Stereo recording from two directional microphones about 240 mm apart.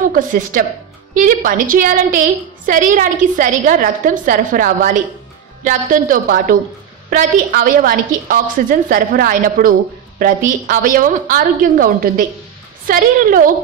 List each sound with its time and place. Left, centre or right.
0.1 s a woman's voice: right